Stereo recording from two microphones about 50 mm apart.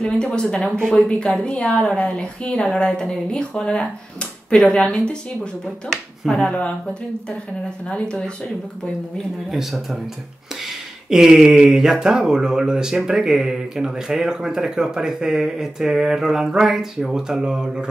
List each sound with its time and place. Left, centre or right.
0.0 s speech: centre
5.9 s speech: centre
6.5 s speech: left
9.5 s speech: centre
11.1 s speech: centre